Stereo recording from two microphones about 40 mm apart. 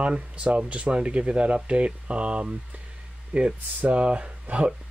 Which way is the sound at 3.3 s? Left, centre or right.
Right.